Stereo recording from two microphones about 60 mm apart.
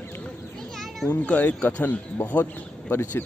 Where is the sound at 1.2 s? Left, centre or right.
Left.